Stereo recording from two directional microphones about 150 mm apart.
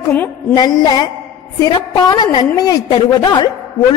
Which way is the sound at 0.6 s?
25° left (ahead or behind).